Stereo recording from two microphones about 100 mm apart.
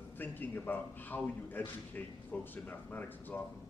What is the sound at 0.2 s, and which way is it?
A man's voice, 20° left (ahead or behind).